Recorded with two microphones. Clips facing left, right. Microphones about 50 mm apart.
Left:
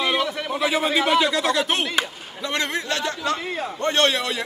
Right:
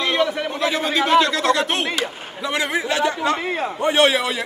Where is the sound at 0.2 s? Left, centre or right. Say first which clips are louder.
Right 5 dB; centre.